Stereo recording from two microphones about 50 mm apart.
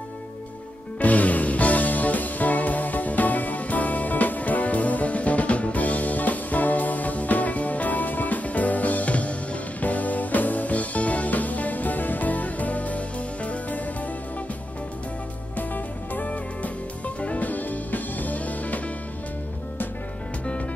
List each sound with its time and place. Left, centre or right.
0.9 s music: left
15.5 s music: left